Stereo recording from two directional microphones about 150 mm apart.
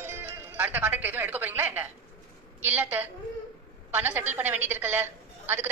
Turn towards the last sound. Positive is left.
turn(degrees=-15)  # may be behind; listen again after turning